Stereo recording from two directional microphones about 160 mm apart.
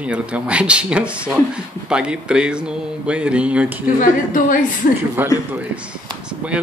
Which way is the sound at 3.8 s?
55° left (ahead or behind).